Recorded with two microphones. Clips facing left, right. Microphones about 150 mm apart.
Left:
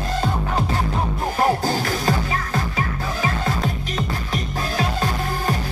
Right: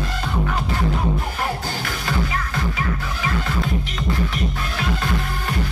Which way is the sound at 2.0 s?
40° left (ahead or behind).